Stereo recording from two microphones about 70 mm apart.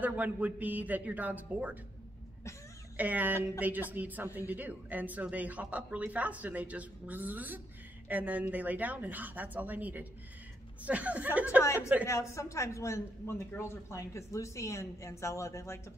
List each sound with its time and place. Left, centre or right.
0.0 s speech: right
3.0 s speech: right
11.6 s a woman's voice: left